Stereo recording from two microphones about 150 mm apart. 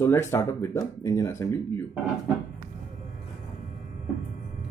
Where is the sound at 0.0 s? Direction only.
15° left (ahead or behind).